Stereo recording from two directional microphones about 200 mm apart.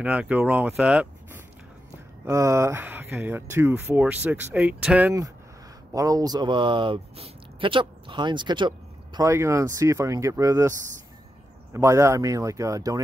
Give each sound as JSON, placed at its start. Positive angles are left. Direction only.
{"t": 0.0, "sound": "speech", "side_deg": -5}
{"t": 5.9, "sound": "speech", "side_deg": -15}
{"t": 11.7, "sound": "speech", "side_deg": -15}